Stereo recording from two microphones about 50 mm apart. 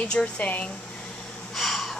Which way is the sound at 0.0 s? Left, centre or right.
Left.